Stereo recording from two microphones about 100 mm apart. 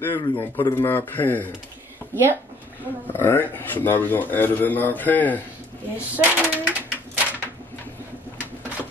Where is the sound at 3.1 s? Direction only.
20° left (ahead or behind).